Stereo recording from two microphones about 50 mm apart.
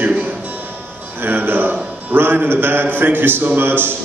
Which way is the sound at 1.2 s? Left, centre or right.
Right.